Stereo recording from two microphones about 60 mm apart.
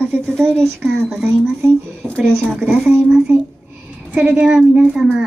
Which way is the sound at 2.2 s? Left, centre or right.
Centre.